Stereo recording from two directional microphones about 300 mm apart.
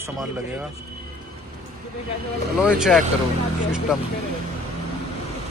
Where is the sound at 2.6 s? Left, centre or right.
Centre.